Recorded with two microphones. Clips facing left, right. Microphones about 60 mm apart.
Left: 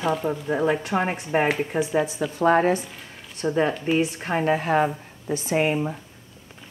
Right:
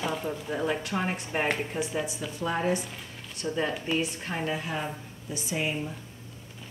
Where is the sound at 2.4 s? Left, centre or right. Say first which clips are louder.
Left 9 dB; left.